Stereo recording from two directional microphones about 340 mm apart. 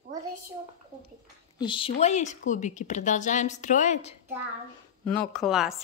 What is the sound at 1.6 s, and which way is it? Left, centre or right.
A woman's voice, centre.